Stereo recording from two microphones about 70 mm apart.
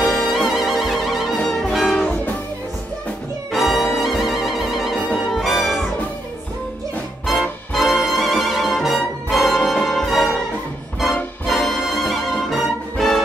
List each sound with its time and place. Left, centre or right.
0.0 s music: centre
2.0 s music: left
3.5 s music: centre
7.7 s brass instrument: centre
9.8 s music: centre
11.4 s music: centre